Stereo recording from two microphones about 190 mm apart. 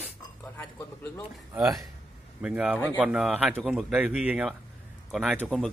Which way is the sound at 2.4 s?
5° right (ahead or behind).